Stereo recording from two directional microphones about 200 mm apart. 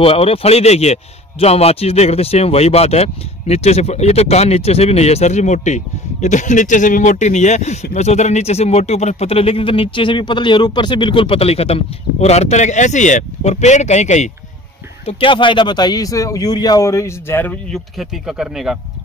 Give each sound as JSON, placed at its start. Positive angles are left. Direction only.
{"t": 0.0, "sound": "a man's voice", "side_deg": 30}